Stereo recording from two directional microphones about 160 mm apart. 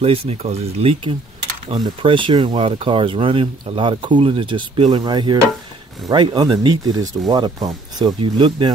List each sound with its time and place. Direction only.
0.0 s speech: 40° right (ahead or behind)